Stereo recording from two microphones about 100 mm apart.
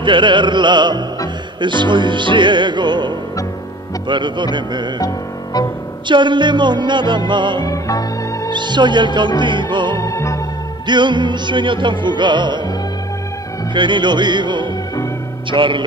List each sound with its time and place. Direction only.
0.0 s music: 55° right (ahead or behind)
4.9 s music: 40° left (ahead or behind)
6.0 s music: 50° right (ahead or behind)
7.6 s music: 35° left (ahead or behind)
8.5 s music: 50° right (ahead or behind)
9.9 s music: 30° left (ahead or behind)
10.9 s music: 50° right (ahead or behind)
13.7 s music: 50° right (ahead or behind)